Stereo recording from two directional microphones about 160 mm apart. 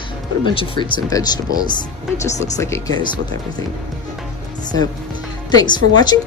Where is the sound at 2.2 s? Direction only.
45° left (ahead or behind).